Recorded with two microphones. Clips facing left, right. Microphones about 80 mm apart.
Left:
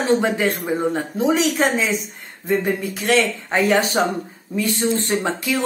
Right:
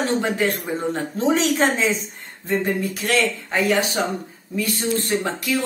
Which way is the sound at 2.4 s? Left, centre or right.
Left.